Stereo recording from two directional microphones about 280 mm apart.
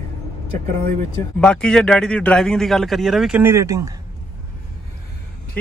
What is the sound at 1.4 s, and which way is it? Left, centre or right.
A man's voice, centre.